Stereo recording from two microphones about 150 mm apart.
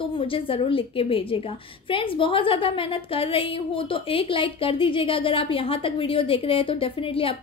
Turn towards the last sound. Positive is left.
turn(degrees=35)  # may be behind; listen again after turning